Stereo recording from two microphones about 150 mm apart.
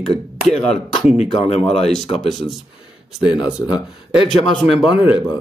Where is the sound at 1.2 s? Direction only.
45° left (ahead or behind).